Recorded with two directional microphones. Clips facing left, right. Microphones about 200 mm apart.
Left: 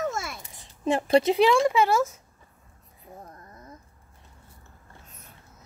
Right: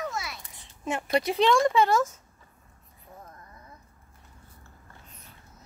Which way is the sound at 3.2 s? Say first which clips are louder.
Left 3 dB; 40° left (ahead or behind).